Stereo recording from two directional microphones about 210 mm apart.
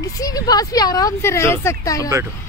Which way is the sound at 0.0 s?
15° left (ahead or behind).